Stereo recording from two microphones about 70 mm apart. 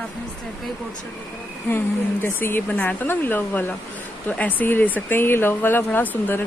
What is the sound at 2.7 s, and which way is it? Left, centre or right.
Speech, left.